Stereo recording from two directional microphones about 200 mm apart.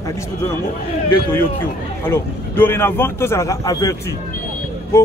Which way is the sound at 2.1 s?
10° left (ahead or behind).